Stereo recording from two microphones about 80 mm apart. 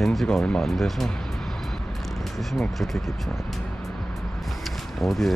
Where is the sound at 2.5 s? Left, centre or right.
Centre.